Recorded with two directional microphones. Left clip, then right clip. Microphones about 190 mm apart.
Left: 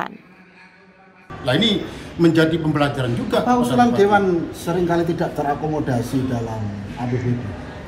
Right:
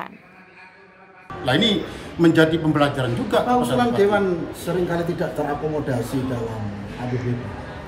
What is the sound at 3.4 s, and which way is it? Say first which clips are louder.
A woman's voice: left 3 dB; 30° left (ahead or behind).